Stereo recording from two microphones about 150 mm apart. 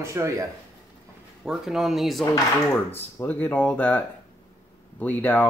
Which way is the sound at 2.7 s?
15° left (ahead or behind).